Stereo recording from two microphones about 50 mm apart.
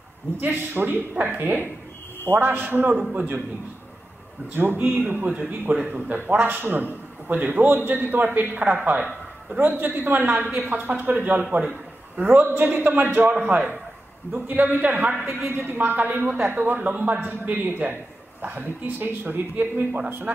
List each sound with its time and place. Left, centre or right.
0.4 s a man's voice: right
2.3 s a man's voice: right
4.6 s a man's voice: right
5.7 s a man's voice: right
15.2 s a man's voice: right
17.2 s a man's voice: right